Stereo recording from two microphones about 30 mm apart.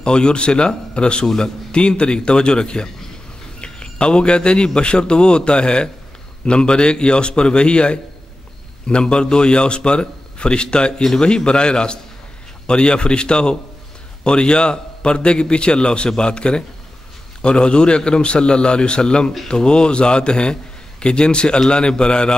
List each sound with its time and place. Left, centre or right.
0.0 s a man's voice: left